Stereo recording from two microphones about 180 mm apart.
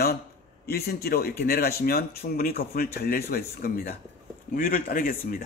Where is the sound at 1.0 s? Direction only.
60° left (ahead or behind).